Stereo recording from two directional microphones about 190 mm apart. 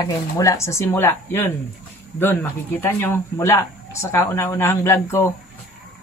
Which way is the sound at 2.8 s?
10° left (ahead or behind).